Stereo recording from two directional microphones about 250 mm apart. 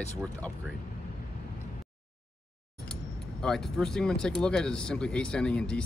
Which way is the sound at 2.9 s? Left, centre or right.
Centre.